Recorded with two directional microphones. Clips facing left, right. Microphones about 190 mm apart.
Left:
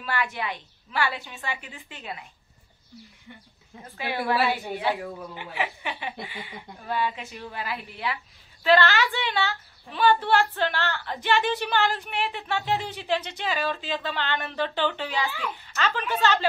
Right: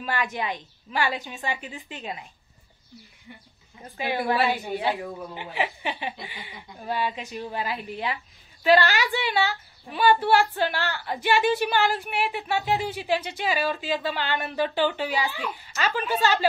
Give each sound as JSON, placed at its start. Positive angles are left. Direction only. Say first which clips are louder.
{"t": 0.0, "sound": "a woman's voice", "louder": "right 1 dB", "side_deg": -20}
{"t": 3.3, "sound": "a woman's voice", "louder": "right 1 dB", "side_deg": -10}